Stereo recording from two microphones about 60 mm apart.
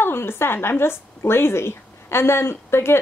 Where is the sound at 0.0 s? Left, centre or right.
Left.